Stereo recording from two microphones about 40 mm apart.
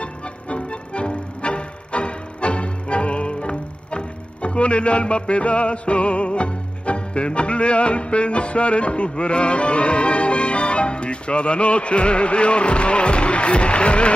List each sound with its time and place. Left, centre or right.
0.0 s music: left